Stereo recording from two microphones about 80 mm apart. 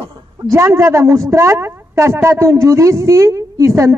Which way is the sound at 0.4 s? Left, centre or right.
Right.